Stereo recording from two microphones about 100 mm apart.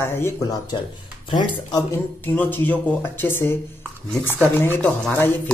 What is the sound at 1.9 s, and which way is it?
Speech, 20° left (ahead or behind).